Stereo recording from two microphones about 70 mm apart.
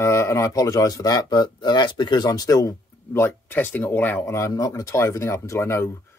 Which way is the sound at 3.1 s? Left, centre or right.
Left.